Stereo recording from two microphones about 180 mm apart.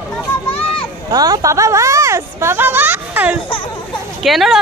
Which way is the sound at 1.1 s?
20° right (ahead or behind).